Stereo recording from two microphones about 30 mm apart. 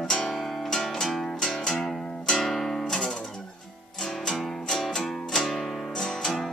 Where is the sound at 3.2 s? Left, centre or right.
Centre.